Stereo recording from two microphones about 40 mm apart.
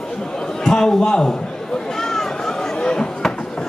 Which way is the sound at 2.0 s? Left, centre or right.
Centre.